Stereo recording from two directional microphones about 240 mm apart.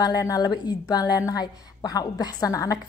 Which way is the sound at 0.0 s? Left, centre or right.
Centre.